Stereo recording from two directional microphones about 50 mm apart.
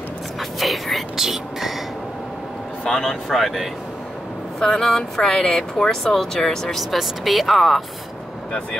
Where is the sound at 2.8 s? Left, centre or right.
Centre.